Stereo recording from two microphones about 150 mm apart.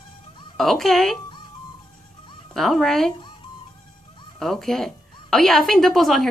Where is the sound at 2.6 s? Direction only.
Centre (ahead or behind).